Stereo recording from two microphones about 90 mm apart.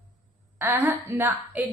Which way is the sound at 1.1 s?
40° right (ahead or behind).